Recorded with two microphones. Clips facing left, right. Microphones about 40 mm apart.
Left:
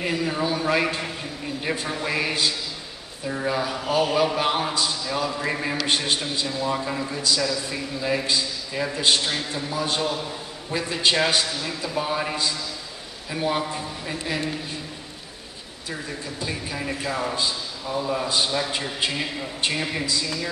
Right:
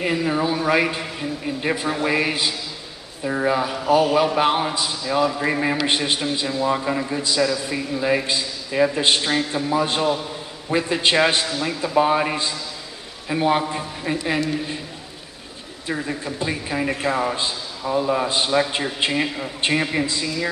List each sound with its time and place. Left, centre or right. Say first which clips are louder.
0.0 s a man's voice: right 4 dB; centre
15.9 s a man's voice: right 6 dB; right